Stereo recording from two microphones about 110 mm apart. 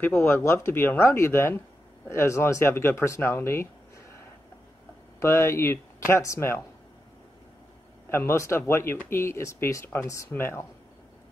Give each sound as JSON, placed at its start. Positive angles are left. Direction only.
{"t": 0.0, "sound": "speech", "side_deg": 20}
{"t": 5.2, "sound": "speech", "side_deg": 25}
{"t": 8.1, "sound": "speech", "side_deg": 25}